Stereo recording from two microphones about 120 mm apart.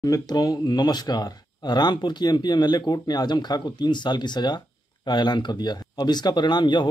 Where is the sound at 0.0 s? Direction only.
30° left (ahead or behind).